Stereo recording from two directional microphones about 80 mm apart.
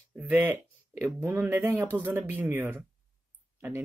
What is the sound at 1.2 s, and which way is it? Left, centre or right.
Speech, right.